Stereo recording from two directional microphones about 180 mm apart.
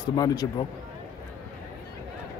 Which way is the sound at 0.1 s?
20° left (ahead or behind).